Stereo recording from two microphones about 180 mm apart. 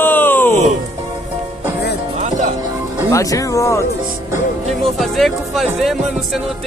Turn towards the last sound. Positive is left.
turn(degrees=0)  # may be behind; listen again after turning